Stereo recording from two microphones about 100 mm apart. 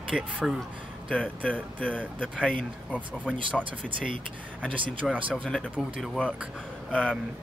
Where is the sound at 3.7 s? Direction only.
60° right (ahead or behind).